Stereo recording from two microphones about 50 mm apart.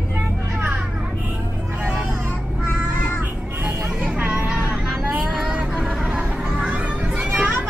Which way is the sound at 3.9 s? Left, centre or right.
Right.